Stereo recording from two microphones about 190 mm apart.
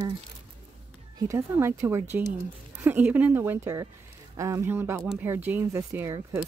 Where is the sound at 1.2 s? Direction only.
15° right (ahead or behind).